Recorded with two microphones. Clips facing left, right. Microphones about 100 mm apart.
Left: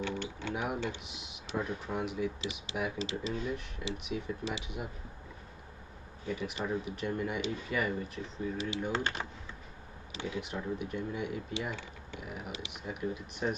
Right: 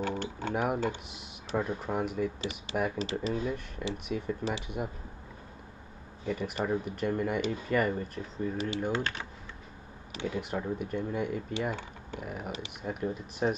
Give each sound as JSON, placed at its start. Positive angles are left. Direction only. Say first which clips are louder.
{"t": 0.0, "sound": "speech", "louder": "right 3 dB", "side_deg": -40}
{"t": 6.2, "sound": "speech", "louder": "right 4 dB", "side_deg": -45}
{"t": 10.1, "sound": "speech", "louder": "right 4 dB", "side_deg": -45}